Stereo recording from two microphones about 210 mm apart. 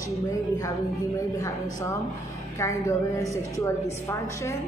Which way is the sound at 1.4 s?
15° left (ahead or behind).